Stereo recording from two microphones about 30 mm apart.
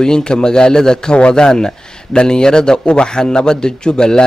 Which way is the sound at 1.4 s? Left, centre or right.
Left.